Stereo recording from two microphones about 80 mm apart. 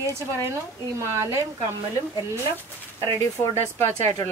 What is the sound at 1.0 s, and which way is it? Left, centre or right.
Speech, right.